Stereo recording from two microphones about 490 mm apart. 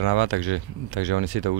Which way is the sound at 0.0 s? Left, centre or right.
Right.